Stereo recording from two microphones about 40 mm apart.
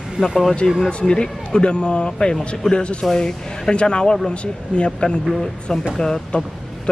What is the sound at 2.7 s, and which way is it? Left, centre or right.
Speech, left.